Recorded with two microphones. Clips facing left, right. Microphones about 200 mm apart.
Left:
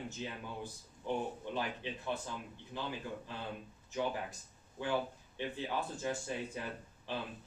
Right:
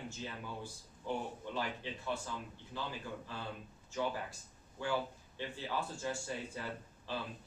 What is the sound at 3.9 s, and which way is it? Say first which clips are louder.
Speech: left 1 dB; 20° left (ahead or behind).